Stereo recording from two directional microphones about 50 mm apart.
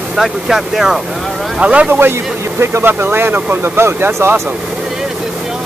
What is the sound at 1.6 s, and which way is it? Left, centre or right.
Speech, right.